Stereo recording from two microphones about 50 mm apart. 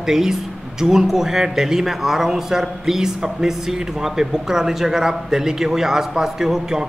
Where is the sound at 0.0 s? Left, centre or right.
Centre.